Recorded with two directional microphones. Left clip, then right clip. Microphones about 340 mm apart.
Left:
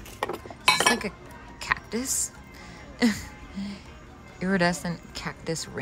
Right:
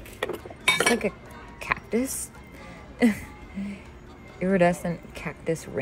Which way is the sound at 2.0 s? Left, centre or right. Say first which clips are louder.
Right 1 dB; left.